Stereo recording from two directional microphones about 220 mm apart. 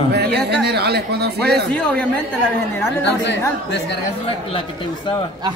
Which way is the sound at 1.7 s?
5° left (ahead or behind).